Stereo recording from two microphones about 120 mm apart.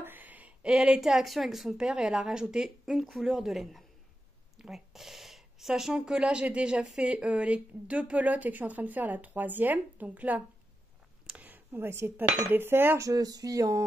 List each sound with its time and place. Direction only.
0.0 s a woman's voice: 15° right (ahead or behind)
11.2 s cutlery: 10° right (ahead or behind)
12.4 s speech: 20° right (ahead or behind)